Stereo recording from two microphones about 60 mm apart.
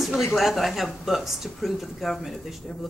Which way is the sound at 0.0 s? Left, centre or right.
Centre.